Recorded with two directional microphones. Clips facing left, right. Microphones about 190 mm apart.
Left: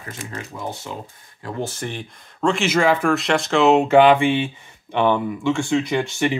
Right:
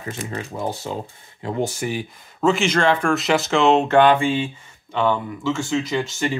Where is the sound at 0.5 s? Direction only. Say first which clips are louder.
Right 4 dB; 35° right (ahead or behind).